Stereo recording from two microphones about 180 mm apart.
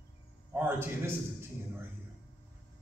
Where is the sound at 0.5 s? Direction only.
10° right (ahead or behind).